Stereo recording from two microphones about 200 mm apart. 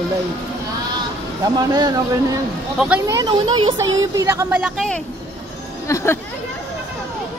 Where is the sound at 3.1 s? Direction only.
20° right (ahead or behind); by 4.9 s centre (ahead or behind).